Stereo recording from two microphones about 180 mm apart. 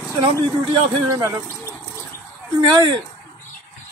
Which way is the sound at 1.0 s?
15° right (ahead or behind).